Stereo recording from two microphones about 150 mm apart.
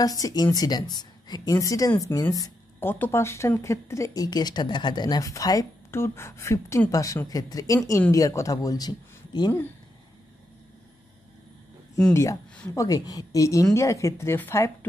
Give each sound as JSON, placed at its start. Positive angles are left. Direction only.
{"t": 0.0, "sound": "speech", "side_deg": 25}
{"t": 12.1, "sound": "speech", "side_deg": 20}